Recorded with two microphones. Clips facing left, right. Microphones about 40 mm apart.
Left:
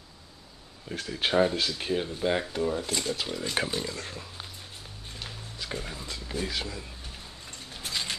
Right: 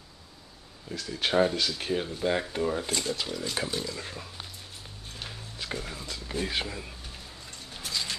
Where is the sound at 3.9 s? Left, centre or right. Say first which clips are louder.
Even; centre.